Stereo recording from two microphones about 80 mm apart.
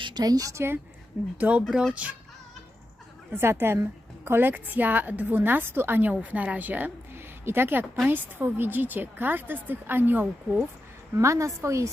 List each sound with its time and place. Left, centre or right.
0.2 s a woman's voice: right
1.1 s speech: centre
3.3 s a woman's voice: right
11.1 s a woman's voice: right